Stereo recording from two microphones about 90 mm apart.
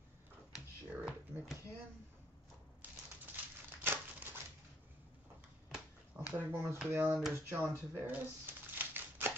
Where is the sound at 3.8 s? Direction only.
25° right (ahead or behind).